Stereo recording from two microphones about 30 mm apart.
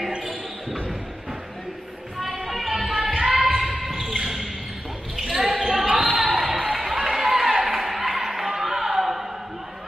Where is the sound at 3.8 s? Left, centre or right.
Centre.